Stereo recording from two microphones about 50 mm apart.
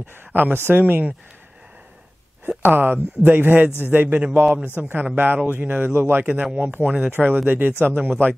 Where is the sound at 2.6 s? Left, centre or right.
Right.